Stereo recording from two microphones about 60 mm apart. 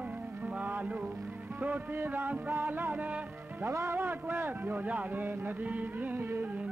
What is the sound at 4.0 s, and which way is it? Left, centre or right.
Speech, right.